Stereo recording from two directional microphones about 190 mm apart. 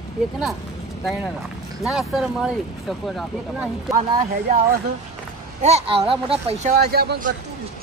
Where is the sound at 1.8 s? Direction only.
5° right (ahead or behind).